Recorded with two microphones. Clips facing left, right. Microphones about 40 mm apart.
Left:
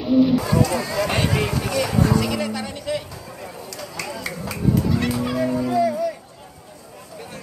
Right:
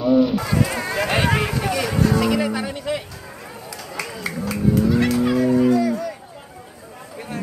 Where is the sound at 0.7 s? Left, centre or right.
Right.